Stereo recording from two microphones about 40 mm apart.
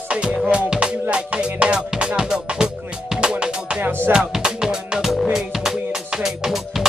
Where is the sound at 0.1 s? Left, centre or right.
Right.